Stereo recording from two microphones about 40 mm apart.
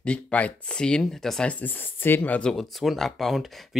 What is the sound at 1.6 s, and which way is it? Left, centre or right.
Speech, left.